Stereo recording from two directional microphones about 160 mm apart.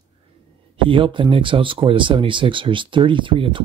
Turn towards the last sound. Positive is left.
turn(degrees=-30)  # may be behind; listen again after turning